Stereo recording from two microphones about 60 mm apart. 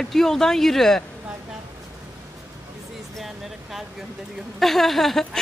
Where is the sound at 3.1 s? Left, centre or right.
Centre.